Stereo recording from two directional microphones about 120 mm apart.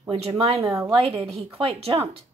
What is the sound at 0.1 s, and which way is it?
Speech, 50° right (ahead or behind).